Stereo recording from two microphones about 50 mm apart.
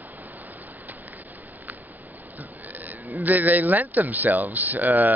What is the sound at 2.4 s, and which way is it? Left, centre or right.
Speech, right.